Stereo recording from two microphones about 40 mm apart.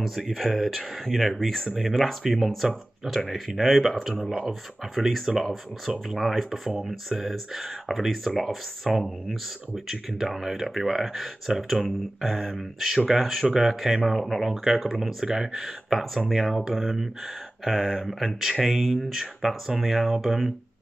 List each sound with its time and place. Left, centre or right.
0.0 s speech: centre